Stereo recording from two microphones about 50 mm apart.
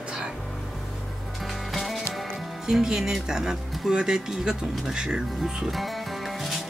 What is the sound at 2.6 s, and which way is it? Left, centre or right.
Speech, centre.